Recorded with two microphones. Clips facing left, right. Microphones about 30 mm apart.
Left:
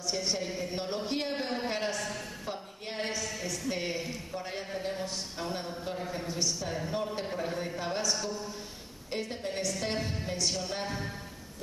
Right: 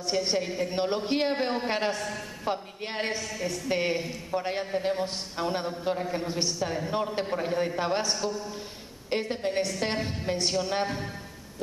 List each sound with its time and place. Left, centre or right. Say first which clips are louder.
0.0 s a woman's voice: right 5 dB; right
5.9 s a man's voice: right 5 dB; centre
6.2 s a man's voice: right 4 dB; right